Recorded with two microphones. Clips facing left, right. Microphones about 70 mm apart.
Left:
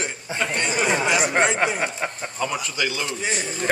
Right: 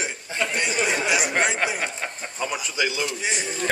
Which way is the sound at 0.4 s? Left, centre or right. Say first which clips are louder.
Even; centre.